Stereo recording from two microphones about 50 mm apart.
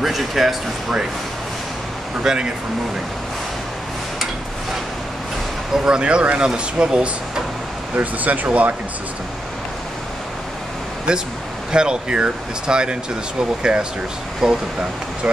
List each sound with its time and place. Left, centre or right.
0.0 s speech: centre
2.2 s speech: centre
5.9 s speech: centre
7.9 s speech: right
11.1 s speech: centre